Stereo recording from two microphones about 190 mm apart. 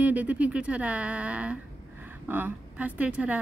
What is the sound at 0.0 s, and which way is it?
A woman's voice, 10° right (ahead or behind).